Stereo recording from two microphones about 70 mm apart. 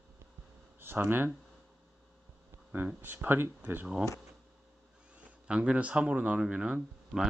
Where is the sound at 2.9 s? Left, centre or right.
Right.